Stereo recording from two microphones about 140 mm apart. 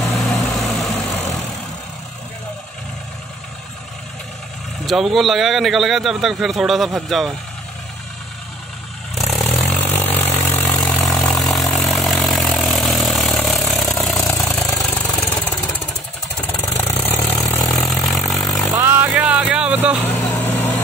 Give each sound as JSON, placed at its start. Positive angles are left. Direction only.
{"t": 0.0, "sound": "vehicle", "side_deg": 0}
{"t": 1.0, "sound": "vehicle", "side_deg": 25}
{"t": 4.8, "sound": "speech", "side_deg": 0}
{"t": 9.1, "sound": "vehicle", "side_deg": 0}
{"t": 9.8, "sound": "vehicle", "side_deg": 55}
{"t": 10.3, "sound": "vehicle", "side_deg": 15}
{"t": 11.1, "sound": "vehicle", "side_deg": 0}
{"t": 14.2, "sound": "vehicle", "side_deg": 20}
{"t": 16.5, "sound": "vehicle", "side_deg": 20}
{"t": 17.6, "sound": "vehicle", "side_deg": 0}
{"t": 18.3, "sound": "a sound", "side_deg": 0}
{"t": 18.8, "sound": "vehicle", "side_deg": -15}
{"t": 20.3, "sound": "vehicle", "side_deg": 15}